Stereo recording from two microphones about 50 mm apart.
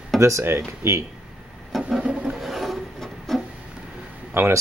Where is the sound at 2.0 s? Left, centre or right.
Centre.